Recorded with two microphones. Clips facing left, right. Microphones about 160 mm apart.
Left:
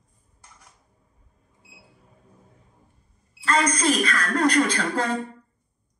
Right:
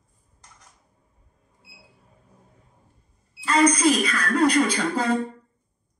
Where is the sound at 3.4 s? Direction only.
10° right (ahead or behind).